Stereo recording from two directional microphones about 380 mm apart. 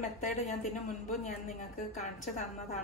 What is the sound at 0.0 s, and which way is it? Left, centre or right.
A woman's voice, centre.